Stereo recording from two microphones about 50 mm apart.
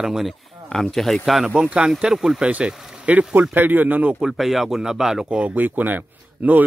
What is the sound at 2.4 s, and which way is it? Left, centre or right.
Speech, right.